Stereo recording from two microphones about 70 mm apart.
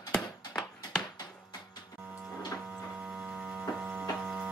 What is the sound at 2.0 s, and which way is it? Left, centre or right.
Printer, right.